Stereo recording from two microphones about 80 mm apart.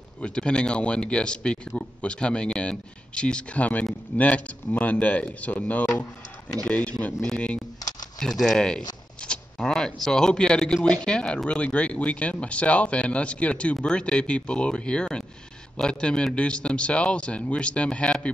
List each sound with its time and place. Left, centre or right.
0.2 s speech: centre